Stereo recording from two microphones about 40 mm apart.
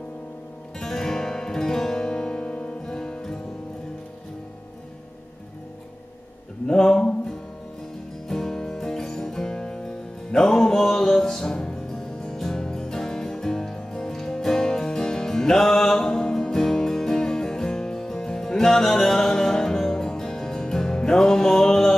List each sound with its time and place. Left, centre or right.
0.7 s music: centre
6.7 s a sound: centre
8.3 s music: centre
11.5 s music: centre